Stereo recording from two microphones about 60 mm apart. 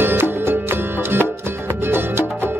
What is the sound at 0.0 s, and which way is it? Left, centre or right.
Music, right.